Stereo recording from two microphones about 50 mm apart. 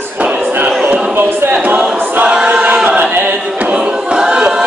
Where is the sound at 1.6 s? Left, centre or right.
Right.